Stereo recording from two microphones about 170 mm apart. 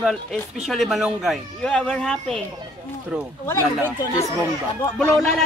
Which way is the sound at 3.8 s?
15° left (ahead or behind).